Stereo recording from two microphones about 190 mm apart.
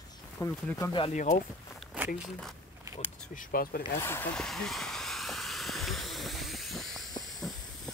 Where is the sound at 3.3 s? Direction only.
45° left (ahead or behind).